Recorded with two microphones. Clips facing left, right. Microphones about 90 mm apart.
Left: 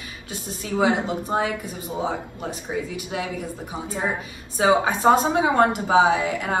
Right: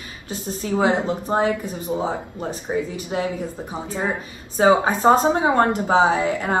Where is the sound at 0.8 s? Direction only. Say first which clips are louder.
Right 1 dB; 35° right (ahead or behind).